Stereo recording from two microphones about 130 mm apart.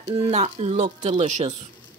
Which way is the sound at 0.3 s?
55° right (ahead or behind).